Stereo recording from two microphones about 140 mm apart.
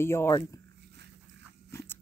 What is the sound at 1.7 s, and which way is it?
Crunch, 20° left (ahead or behind).